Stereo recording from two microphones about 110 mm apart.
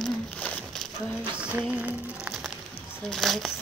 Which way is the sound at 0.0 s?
10° left (ahead or behind).